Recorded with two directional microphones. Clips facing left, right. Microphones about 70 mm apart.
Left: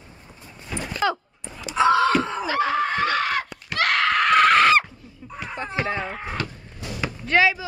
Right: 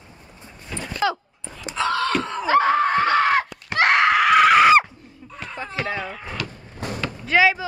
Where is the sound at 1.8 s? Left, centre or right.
Centre.